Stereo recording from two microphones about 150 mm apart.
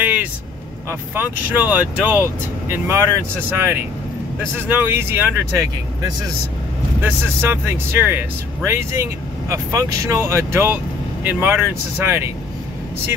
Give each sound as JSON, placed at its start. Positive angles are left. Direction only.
{"t": 0.0, "sound": "vehicle", "side_deg": -10}
{"t": 1.1, "sound": "speech", "side_deg": -10}
{"t": 4.6, "sound": "speech", "side_deg": -15}